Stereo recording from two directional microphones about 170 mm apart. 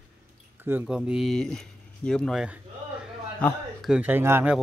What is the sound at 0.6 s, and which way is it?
Speech, 10° right (ahead or behind).